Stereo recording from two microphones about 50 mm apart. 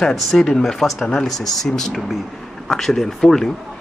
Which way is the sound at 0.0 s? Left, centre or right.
Centre.